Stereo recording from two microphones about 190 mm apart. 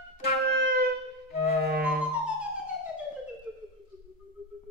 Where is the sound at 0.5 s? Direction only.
60° right (ahead or behind).